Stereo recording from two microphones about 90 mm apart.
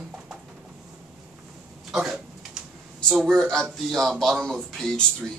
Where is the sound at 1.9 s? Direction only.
5° right (ahead or behind).